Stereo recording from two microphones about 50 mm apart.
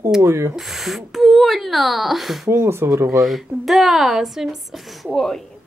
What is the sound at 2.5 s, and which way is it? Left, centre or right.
Speech, right.